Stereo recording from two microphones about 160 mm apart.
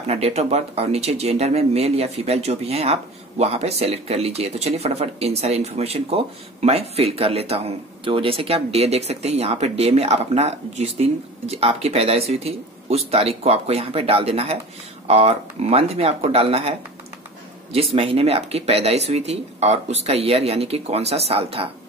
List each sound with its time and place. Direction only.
0.0 s speech: 40° right (ahead or behind)
17.7 s speech: 35° right (ahead or behind)